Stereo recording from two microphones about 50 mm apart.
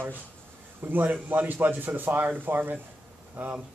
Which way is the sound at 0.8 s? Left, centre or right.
Right.